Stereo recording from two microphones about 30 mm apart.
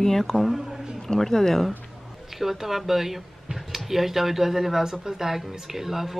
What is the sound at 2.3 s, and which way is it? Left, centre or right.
Speech, centre.